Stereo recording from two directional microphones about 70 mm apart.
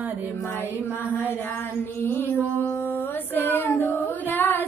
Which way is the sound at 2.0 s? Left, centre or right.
Left.